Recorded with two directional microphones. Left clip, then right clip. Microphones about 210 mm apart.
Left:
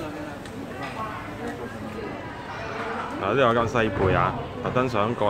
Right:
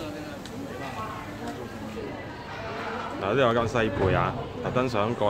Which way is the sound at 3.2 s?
Centre (ahead or behind).